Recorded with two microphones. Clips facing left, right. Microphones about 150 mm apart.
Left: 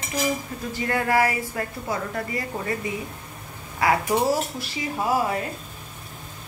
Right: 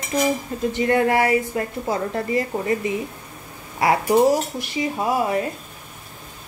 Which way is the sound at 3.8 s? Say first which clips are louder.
Right 2 dB; 25° right (ahead or behind).